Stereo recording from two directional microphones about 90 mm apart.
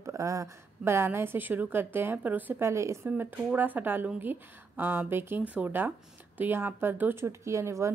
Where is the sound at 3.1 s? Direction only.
20° right (ahead or behind).